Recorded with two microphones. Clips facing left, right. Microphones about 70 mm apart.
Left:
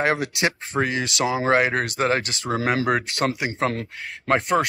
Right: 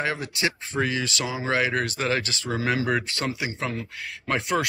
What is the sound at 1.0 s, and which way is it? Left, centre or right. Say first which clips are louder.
Speech: left 6 dB; left.